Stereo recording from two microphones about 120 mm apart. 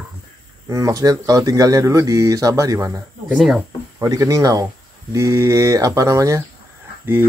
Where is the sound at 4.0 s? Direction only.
25° right (ahead or behind).